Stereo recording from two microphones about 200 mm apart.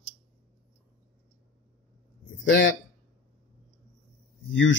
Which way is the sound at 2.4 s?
65° left (ahead or behind).